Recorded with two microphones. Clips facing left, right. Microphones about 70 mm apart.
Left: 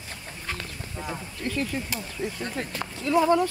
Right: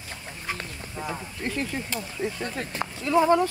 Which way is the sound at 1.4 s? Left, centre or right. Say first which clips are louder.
Left 1 dB; right.